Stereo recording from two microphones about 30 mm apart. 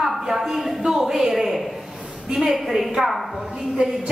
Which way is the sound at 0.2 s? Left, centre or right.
Centre.